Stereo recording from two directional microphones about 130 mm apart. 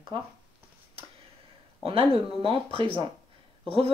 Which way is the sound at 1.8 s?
45° right (ahead or behind).